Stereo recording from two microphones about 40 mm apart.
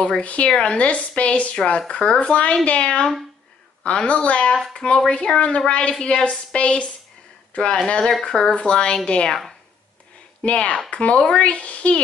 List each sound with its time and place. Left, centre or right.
0.2 s a woman's voice: left
1.9 s speech: left
2.2 s a woman's voice: left
10.4 s a woman's voice: left